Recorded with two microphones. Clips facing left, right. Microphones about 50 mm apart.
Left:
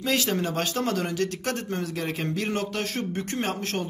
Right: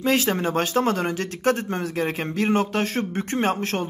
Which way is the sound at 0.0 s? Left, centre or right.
Right.